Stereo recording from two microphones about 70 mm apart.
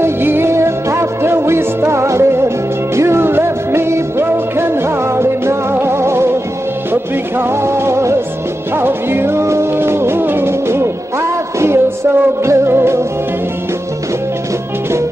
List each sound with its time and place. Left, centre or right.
0.0 s music: right